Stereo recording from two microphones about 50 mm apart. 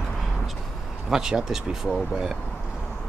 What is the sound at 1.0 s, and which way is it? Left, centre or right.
Speech, centre.